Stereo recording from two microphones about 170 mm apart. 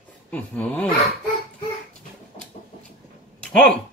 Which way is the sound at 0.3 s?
10° left (ahead or behind).